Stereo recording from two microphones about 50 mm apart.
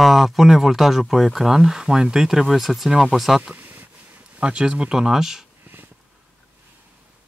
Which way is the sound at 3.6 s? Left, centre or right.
Right.